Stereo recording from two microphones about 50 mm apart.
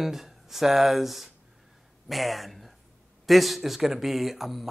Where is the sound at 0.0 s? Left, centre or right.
Centre.